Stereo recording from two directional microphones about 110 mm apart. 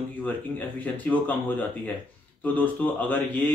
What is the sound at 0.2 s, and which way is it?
Speech, 15° left (ahead or behind).